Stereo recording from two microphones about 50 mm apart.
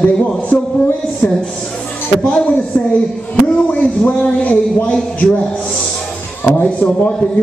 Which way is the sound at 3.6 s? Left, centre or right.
Left.